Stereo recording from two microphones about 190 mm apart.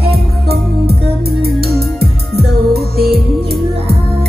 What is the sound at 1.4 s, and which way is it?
Music, 55° right (ahead or behind).